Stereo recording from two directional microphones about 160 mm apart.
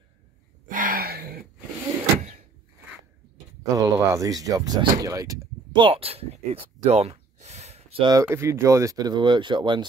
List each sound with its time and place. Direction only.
0.7 s a sound: 60° right (ahead or behind)
3.7 s speech: 20° right (ahead or behind)
5.8 s gasp: 35° right (ahead or behind)
8.1 s speech: 20° right (ahead or behind)